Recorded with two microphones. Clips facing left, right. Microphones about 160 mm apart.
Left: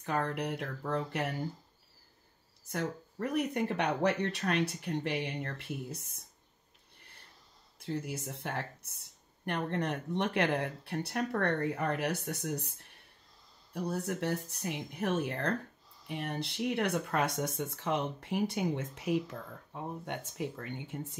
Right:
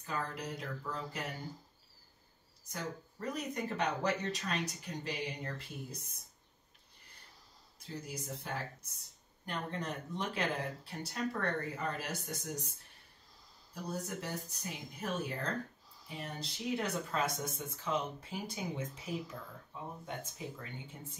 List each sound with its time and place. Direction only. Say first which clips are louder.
0.0 s speech: left 6 dB; 65° left (ahead or behind)
2.7 s speech: left 6 dB; 65° left (ahead or behind)
7.8 s speech: left 7 dB; 65° left (ahead or behind)
13.9 s speech: left 6 dB; 65° left (ahead or behind)